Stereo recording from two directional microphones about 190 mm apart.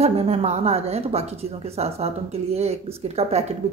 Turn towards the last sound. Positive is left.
turn(degrees=-35)  # may be behind; listen again after turning